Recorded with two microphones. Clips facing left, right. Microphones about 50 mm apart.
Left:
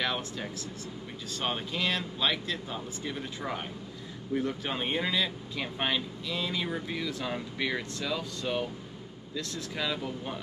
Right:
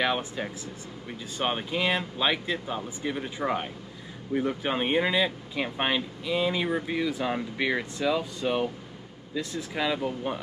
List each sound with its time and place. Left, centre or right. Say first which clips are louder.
0.0 s speech: right 5 dB; centre